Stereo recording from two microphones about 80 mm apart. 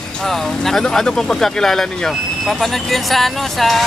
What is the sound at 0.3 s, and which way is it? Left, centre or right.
Speech, centre.